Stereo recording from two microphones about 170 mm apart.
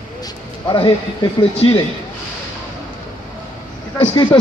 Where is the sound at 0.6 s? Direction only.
30° left (ahead or behind).